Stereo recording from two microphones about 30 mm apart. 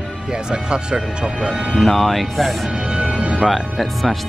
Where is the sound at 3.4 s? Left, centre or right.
Centre.